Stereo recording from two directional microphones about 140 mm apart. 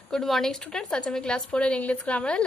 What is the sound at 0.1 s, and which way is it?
A woman's voice, 5° left (ahead or behind).